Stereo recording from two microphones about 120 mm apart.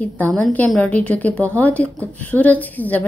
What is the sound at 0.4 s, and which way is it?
A woman's voice, 10° left (ahead or behind).